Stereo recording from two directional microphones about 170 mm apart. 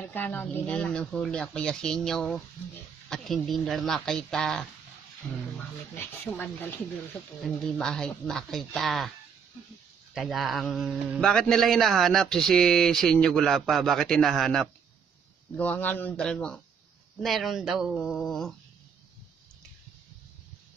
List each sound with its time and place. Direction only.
0.0 s a man's voice: 10° left (ahead or behind)
5.9 s a man's voice: 10° left (ahead or behind)
10.1 s a man's voice: centre (ahead or behind)